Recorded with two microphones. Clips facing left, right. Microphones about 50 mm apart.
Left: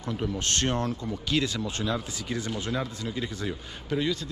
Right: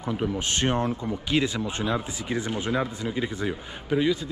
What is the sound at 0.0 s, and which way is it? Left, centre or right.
Speech, centre.